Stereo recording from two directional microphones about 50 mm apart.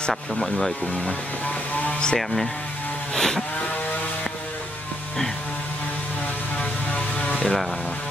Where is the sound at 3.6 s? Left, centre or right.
Left.